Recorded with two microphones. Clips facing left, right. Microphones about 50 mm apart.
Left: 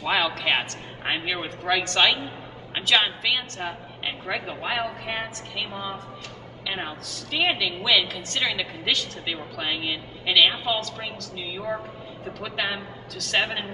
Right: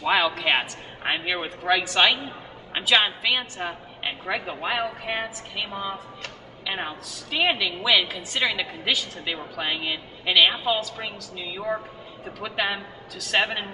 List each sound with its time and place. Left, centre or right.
0.0 s a woman's voice: centre